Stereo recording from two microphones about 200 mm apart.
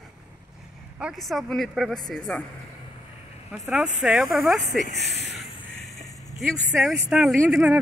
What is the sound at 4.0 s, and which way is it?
Speech, centre (ahead or behind).